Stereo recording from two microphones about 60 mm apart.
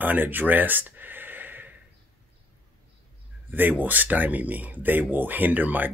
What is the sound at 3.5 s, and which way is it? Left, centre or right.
Speech, right.